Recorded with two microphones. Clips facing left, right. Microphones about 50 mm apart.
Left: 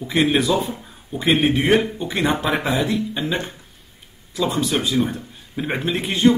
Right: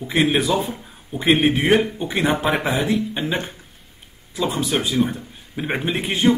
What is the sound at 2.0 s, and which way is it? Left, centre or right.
Speech, centre.